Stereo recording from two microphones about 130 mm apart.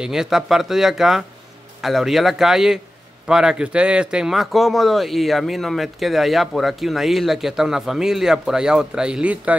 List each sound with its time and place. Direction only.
0.0 s speech: 5° right (ahead or behind)